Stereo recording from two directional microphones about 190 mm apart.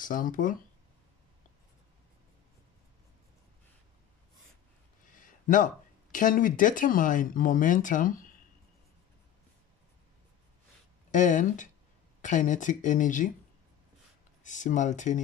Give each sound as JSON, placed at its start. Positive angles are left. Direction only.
{"t": 0.0, "sound": "speech", "side_deg": 45}
{"t": 5.1, "sound": "a sound", "side_deg": 45}
{"t": 6.1, "sound": "speech", "side_deg": 45}
{"t": 11.1, "sound": "speech", "side_deg": 40}
{"t": 14.4, "sound": "speech", "side_deg": 40}